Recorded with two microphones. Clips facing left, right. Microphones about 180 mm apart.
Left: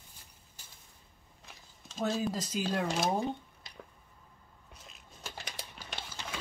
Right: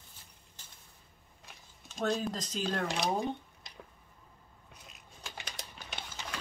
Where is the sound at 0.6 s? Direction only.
10° left (ahead or behind).